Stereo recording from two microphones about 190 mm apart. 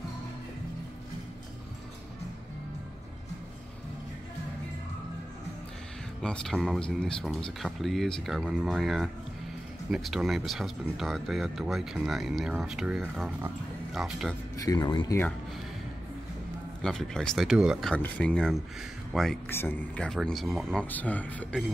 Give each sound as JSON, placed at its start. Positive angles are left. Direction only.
{"t": 6.2, "sound": "speech", "side_deg": 5}
{"t": 14.6, "sound": "speech", "side_deg": 20}
{"t": 16.8, "sound": "speech", "side_deg": 5}